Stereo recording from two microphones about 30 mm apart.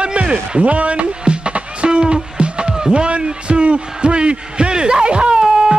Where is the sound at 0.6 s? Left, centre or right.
Right.